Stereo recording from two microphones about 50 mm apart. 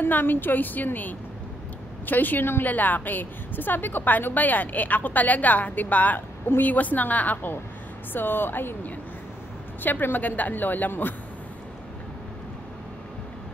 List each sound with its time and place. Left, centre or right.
0.0 s a woman's voice: left
8.1 s a woman's voice: left